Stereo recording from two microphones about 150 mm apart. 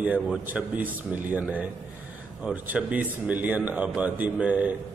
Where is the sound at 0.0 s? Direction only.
10° right (ahead or behind).